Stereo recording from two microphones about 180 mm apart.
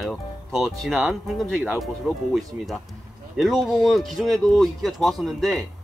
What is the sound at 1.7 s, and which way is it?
Speech, centre (ahead or behind).